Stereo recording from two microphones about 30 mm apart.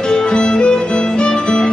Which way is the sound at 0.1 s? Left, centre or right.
Left.